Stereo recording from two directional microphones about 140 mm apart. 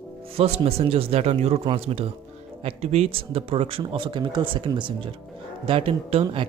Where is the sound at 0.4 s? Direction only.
45° right (ahead or behind).